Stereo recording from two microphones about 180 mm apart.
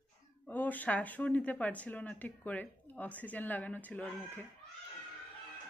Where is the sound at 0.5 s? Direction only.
10° left (ahead or behind).